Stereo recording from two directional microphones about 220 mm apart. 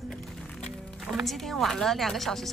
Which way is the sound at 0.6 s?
Centre (ahead or behind).